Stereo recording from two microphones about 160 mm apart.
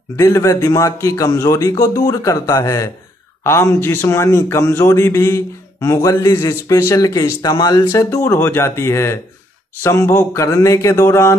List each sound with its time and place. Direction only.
0.1 s a man's voice: 20° left (ahead or behind)